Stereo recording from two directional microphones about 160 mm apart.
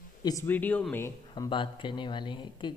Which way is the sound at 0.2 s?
20° left (ahead or behind).